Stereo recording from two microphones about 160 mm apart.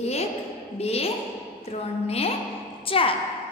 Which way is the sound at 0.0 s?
40° left (ahead or behind).